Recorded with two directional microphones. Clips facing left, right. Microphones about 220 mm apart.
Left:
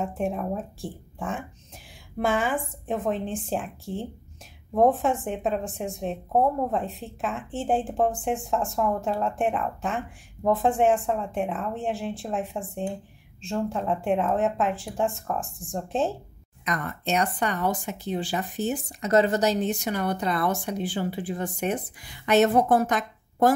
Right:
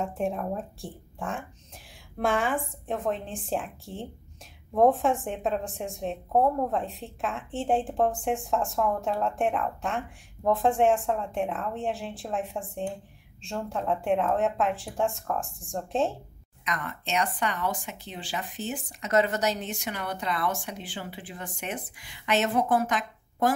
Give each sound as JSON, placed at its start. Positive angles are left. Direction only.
{"t": 0.0, "sound": "a woman's voice", "side_deg": 0}
{"t": 16.6, "sound": "speech", "side_deg": 40}